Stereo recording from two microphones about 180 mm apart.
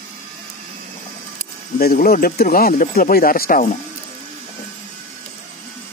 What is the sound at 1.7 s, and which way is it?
Speech, 55° left (ahead or behind).